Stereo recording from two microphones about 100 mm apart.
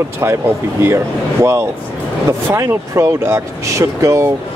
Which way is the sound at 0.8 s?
30° right (ahead or behind).